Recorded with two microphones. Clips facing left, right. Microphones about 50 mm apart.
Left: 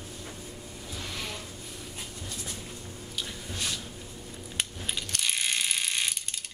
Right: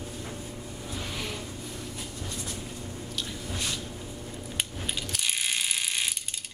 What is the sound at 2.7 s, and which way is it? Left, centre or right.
Squish, right.